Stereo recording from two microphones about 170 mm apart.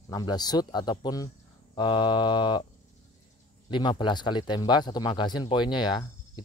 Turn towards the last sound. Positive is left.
turn(degrees=25)  # may be behind; listen again after turning